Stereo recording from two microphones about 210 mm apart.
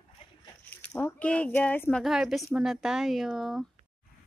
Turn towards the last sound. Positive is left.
turn(degrees=0)  # may be behind; listen again after turning